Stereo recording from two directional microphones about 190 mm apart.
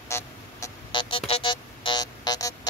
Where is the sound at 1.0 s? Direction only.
30° left (ahead or behind).